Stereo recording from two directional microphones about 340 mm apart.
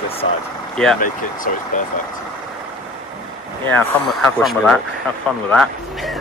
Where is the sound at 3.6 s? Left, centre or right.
Centre.